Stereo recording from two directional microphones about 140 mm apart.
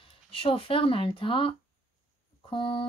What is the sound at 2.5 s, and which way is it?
Speech, 40° left (ahead or behind).